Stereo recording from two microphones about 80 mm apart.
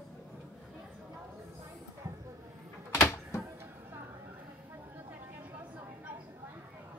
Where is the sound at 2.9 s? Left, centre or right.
Left.